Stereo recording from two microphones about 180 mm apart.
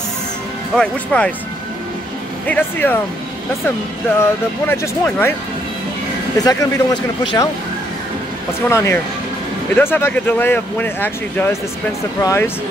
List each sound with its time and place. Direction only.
0.7 s speech: 5° left (ahead or behind)
2.4 s speech: 10° left (ahead or behind)
4.2 s speech: 15° left (ahead or behind)
6.3 s speech: 20° left (ahead or behind)
8.6 s speech: 15° left (ahead or behind)